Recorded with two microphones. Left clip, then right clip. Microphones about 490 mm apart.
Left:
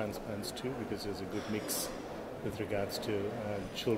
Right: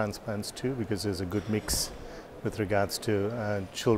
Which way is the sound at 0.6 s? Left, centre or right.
Right.